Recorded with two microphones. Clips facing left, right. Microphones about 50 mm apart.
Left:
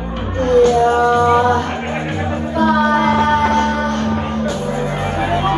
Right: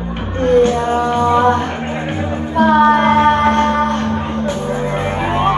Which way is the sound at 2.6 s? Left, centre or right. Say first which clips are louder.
Right 4 dB; right.